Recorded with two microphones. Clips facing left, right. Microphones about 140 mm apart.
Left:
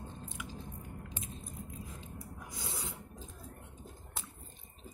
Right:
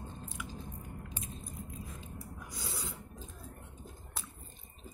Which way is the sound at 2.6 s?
25° left (ahead or behind).